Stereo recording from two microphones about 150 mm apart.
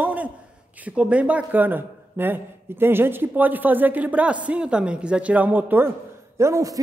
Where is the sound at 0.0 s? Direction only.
10° right (ahead or behind).